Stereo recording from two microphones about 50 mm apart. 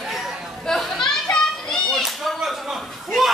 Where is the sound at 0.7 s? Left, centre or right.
Centre.